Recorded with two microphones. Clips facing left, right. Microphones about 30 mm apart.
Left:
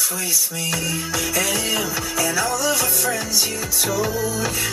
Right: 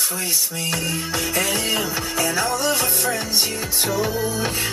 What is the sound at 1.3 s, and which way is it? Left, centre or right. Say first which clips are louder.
Music: even; right.